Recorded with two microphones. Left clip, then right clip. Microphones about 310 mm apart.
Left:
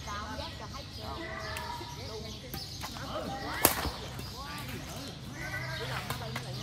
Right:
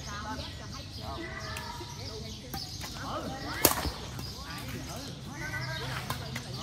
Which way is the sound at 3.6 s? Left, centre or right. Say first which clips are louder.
Right 1 dB; centre.